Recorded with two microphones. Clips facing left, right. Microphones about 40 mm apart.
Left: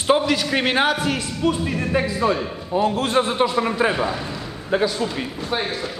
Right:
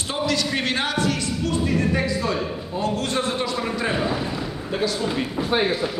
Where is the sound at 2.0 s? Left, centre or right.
Left.